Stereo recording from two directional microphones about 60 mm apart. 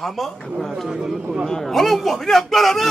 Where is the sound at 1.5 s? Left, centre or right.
Centre.